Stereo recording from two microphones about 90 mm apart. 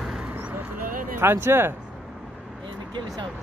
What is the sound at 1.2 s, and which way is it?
Speech, 25° right (ahead or behind).